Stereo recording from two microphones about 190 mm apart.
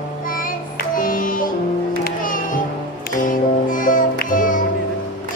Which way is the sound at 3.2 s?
45° left (ahead or behind).